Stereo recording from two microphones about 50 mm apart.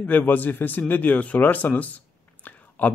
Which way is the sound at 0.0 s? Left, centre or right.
Left.